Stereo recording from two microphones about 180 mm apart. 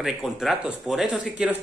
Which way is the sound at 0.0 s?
Centre (ahead or behind).